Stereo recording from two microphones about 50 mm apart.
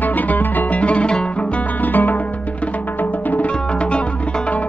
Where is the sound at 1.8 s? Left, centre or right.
Left.